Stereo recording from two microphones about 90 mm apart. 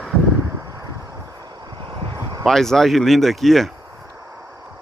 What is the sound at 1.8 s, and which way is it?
Vehicle, 65° right (ahead or behind).